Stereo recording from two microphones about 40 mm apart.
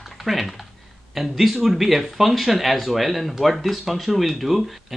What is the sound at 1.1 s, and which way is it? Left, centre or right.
Speech, centre.